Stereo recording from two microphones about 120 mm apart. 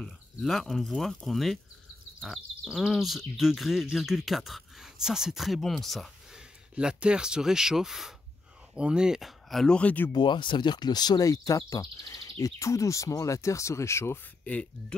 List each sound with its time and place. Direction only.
0.0 s speech: 5° left (ahead or behind)
10.1 s speech: 40° left (ahead or behind); by 15.0 s 10° left (ahead or behind)